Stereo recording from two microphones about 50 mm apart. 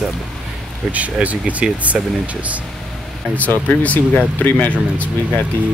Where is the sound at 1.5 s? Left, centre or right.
Right.